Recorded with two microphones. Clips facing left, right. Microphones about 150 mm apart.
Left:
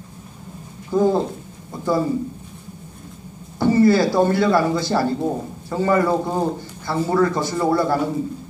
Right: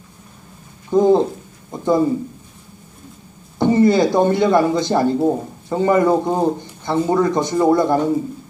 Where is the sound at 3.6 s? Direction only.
20° right (ahead or behind).